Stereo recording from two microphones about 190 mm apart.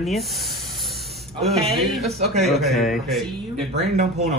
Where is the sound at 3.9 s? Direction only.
35° right (ahead or behind).